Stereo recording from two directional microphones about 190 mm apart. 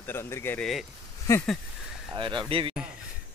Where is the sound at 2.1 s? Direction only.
25° right (ahead or behind).